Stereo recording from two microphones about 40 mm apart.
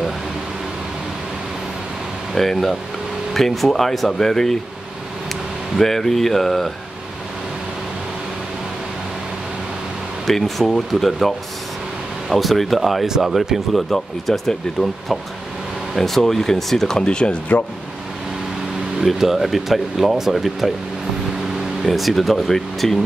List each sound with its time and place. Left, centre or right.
2.3 s speech: centre
5.8 s speech: centre
10.2 s speech: centre
17.0 s speech: left
19.1 s speech: centre
21.8 s speech: centre